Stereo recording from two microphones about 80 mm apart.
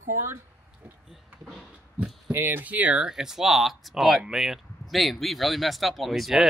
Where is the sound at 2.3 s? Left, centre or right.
Right.